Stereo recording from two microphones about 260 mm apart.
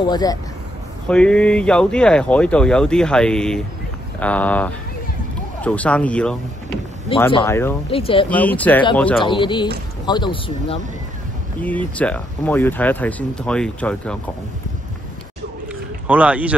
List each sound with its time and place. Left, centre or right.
0.0 s speech: centre
1.0 s speech: centre
7.9 s speech: left
8.3 s speech: centre
9.2 s speech: centre
11.6 s speech: centre
16.1 s speech: centre